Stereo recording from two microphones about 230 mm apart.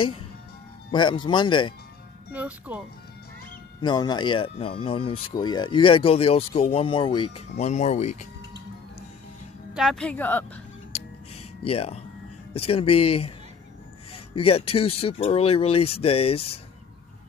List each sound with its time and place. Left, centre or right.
0.9 s speech: centre
2.3 s speech: centre
3.8 s speech: centre
9.8 s a woman's voice: centre
11.6 s speech: left